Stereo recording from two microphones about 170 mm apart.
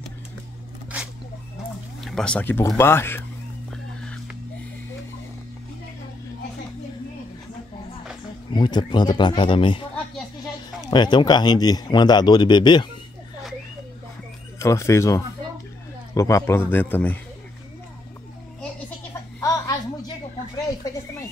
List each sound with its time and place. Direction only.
2.0 s speech: 5° left (ahead or behind)
3.7 s music: 5° left (ahead or behind)
8.5 s a man's voice: 25° left (ahead or behind)
10.9 s a man's voice: 25° left (ahead or behind)
14.6 s speech: 15° left (ahead or behind)
19.4 s a sound: 20° left (ahead or behind)